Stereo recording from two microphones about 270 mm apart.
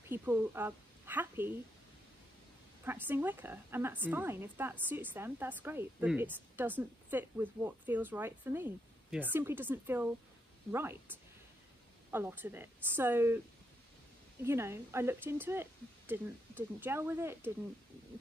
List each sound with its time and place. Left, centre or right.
0.1 s a woman's voice: centre
2.8 s a woman's voice: centre
12.1 s a woman's voice: centre
14.4 s a woman's voice: centre